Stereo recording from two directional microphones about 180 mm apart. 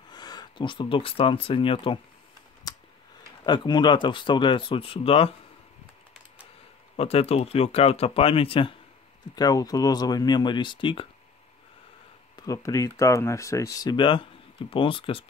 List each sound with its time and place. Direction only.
0.1 s speech: 20° left (ahead or behind)
2.6 s clicking: 20° left (ahead or behind)
3.4 s speech: 25° left (ahead or behind)
7.0 s speech: 35° left (ahead or behind)
12.4 s speech: 20° left (ahead or behind)